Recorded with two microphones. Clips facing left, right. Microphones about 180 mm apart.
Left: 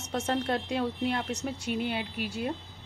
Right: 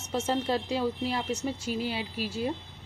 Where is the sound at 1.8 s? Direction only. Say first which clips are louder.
Even; 55° left (ahead or behind).